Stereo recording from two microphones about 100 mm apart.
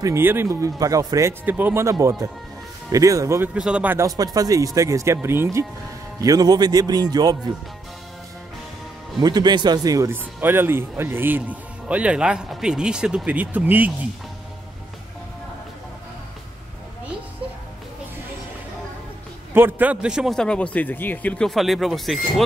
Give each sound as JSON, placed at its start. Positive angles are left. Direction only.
{"t": 0.0, "sound": "speech", "side_deg": -25}
{"t": 1.4, "sound": "speech", "side_deg": -20}
{"t": 3.5, "sound": "speech", "side_deg": -10}
{"t": 4.2, "sound": "speech", "side_deg": -40}
{"t": 6.2, "sound": "speech", "side_deg": -40}
{"t": 9.2, "sound": "speech", "side_deg": -45}
{"t": 10.1, "sound": "speech", "side_deg": -20}
{"t": 19.5, "sound": "speech", "side_deg": -20}
{"t": 20.3, "sound": "speech", "side_deg": 10}
{"t": 21.5, "sound": "speech", "side_deg": 0}